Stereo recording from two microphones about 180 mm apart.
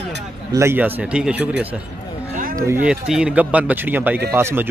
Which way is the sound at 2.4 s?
50° right (ahead or behind).